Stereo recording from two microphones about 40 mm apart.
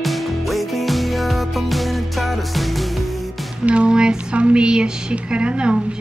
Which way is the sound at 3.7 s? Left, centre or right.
Right.